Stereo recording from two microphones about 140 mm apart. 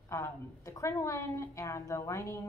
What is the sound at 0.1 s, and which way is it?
A woman's voice, 20° left (ahead or behind).